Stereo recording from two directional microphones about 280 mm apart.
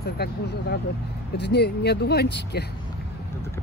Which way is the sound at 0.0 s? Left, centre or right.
Left.